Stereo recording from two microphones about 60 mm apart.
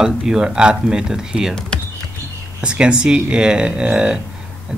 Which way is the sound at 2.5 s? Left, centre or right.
Centre.